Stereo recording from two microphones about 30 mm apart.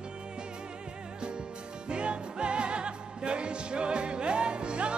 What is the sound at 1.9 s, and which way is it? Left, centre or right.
Music, right.